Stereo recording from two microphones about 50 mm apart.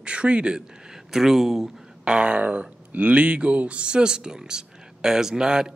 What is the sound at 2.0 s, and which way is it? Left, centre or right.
Speech, right.